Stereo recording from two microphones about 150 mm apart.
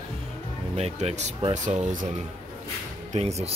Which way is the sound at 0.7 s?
45° right (ahead or behind).